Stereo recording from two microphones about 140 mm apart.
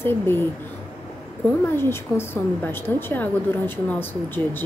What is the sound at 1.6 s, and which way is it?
A woman's voice, 15° left (ahead or behind).